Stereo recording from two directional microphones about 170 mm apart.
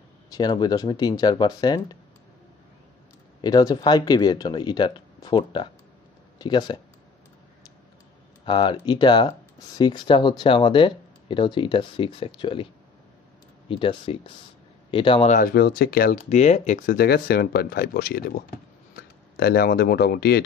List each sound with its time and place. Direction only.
0.3 s speech: 25° left (ahead or behind)
3.3 s speech: 25° left (ahead or behind)
8.5 s speech: 30° left (ahead or behind)
13.7 s a man's voice: 30° left (ahead or behind)
15.2 s speech: 50° left (ahead or behind)
15.5 s speech: 70° left (ahead or behind)
16.3 s speech: 40° left (ahead or behind)
16.9 s speech: 65° left (ahead or behind)